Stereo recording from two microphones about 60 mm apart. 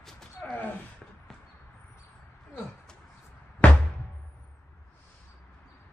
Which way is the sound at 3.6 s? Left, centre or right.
Left.